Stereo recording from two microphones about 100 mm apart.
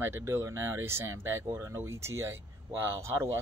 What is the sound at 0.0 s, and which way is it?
Speech, 25° right (ahead or behind).